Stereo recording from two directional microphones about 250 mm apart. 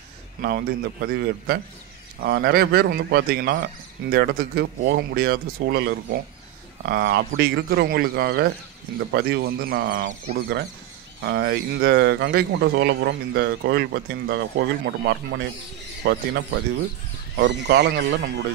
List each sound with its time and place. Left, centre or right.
0.4 s a man's voice: right
17.4 s a man's voice: right